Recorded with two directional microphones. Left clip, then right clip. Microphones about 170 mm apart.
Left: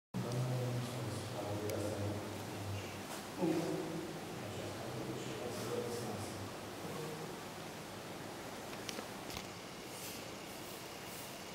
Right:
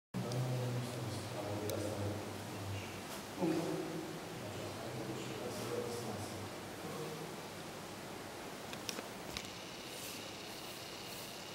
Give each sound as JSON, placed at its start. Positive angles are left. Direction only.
{"t": 3.4, "sound": "speech", "side_deg": 10}